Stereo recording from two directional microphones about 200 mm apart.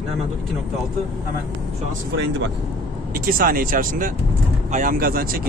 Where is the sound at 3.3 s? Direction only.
45° right (ahead or behind).